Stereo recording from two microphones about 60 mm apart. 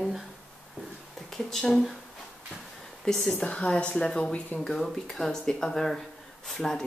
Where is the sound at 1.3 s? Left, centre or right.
Centre.